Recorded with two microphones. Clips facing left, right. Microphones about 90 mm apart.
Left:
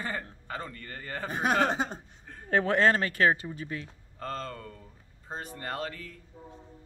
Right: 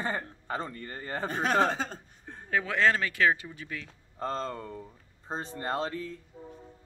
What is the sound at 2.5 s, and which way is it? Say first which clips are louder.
Speech: left 2 dB; 45° left (ahead or behind).